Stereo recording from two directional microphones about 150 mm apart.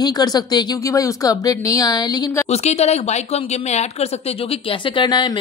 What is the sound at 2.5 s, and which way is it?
A woman's voice, 45° left (ahead or behind).